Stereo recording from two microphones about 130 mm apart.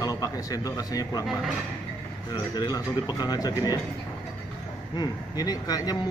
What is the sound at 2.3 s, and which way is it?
A man's voice, 30° left (ahead or behind).